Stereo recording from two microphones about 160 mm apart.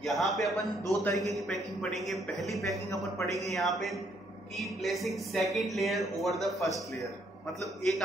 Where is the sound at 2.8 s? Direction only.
20° left (ahead or behind).